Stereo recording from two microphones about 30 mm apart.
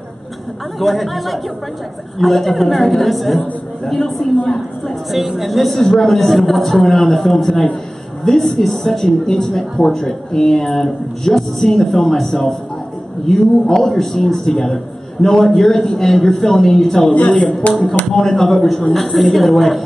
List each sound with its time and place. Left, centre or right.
0.7 s a woman's voice: centre
5.1 s a woman's voice: centre
5.8 s speech: centre
17.6 s speech: left
18.1 s a woman's voice: centre